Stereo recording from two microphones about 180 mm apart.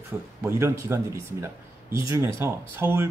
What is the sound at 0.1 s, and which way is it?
Speech, 10° right (ahead or behind).